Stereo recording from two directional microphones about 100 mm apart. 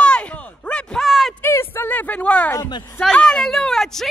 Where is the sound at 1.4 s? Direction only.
25° left (ahead or behind); by 4.0 s 5° left (ahead or behind).